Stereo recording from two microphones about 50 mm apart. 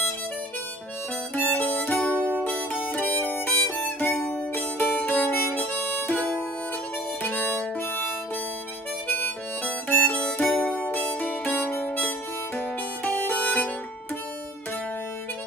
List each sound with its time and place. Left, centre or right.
1.3 s harmonica: left
2.0 s music: left
6.0 s harmonica: left
9.8 s harmonica: left
10.4 s harmonica: left
10.9 s music: left
12.5 s harmonica: left